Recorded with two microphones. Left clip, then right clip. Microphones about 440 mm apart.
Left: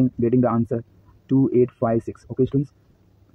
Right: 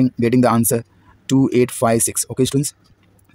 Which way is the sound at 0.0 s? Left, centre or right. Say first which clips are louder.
Right 4 dB; left.